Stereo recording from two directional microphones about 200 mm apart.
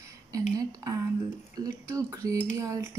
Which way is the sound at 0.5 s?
15° right (ahead or behind).